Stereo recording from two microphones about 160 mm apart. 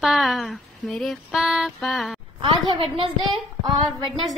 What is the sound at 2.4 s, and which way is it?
A woman's voice, 30° right (ahead or behind).